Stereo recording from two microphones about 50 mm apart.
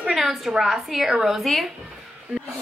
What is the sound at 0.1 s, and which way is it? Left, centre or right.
A woman's voice, centre.